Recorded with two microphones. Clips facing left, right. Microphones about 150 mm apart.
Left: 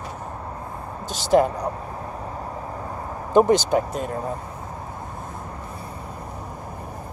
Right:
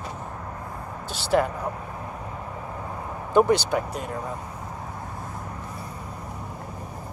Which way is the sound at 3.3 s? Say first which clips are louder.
Left 3 dB; 20° left (ahead or behind).